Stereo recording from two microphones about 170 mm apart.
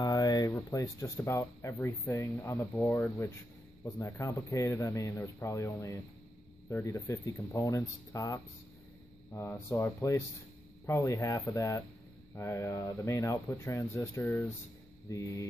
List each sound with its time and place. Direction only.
0.0 s a sound: 20° left (ahead or behind)
0.5 s speech: 15° left (ahead or behind)
9.5 s speech: 15° left (ahead or behind)